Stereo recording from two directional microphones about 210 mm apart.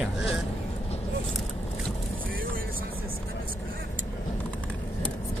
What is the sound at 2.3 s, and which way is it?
Vehicle, 45° right (ahead or behind).